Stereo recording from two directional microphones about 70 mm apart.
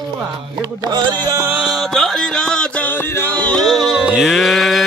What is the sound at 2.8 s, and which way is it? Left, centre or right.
Music, left.